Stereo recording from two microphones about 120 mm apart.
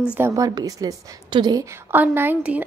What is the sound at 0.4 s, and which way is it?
A woman's voice, 30° right (ahead or behind).